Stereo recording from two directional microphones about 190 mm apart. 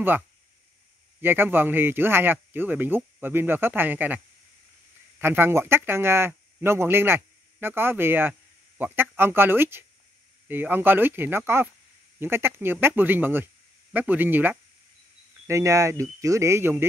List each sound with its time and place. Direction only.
1.2 s speech: 10° right (ahead or behind)
5.2 s speech: 10° right (ahead or behind)